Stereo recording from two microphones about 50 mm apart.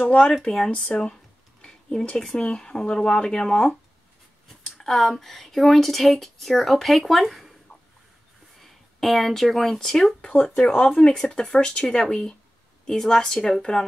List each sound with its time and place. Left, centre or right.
0.2 s speech: centre
0.7 s speech: left
1.6 s a sound: centre
2.1 s speech: centre
4.6 s a sound: centre
4.9 s speech: centre
8.5 s speech: centre
10.5 s speech: left